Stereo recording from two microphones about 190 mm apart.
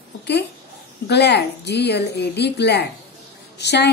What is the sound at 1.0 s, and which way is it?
A woman's voice, 65° left (ahead or behind).